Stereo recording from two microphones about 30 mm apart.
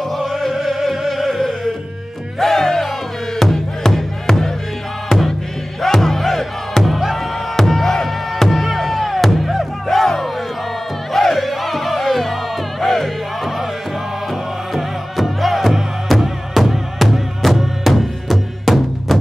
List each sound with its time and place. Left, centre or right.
0.0 s music: centre
5.8 s music: centre